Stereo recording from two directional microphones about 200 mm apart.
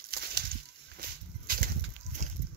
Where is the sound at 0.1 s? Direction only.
50° right (ahead or behind).